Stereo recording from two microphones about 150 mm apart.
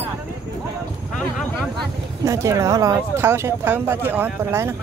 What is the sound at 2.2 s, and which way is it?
Speech, 20° right (ahead or behind).